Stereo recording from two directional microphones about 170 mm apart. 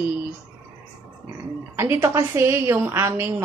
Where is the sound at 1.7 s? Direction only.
15° right (ahead or behind).